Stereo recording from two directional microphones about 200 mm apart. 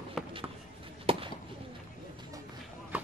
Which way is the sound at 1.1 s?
30° right (ahead or behind).